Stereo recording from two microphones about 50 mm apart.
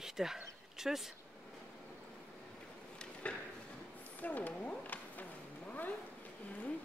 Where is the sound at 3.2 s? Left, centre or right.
Left.